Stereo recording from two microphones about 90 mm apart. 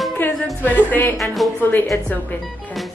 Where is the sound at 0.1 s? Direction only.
15° left (ahead or behind).